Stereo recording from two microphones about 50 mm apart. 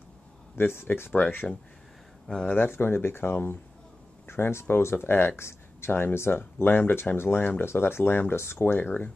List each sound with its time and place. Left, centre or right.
0.6 s speech: left
1.3 s speech: left